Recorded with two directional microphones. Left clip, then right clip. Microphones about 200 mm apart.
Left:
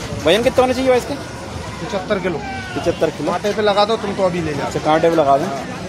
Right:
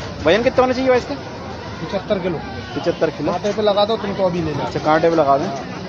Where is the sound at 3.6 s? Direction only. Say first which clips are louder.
Left 1 dB; 20° right (ahead or behind).